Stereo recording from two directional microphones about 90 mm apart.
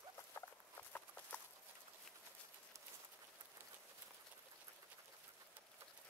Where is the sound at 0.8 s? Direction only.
20° left (ahead or behind).